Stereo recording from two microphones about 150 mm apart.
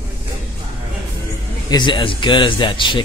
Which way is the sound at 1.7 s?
30° left (ahead or behind).